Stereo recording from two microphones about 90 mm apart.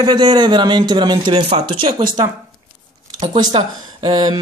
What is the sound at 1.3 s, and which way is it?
Speech, 90° right.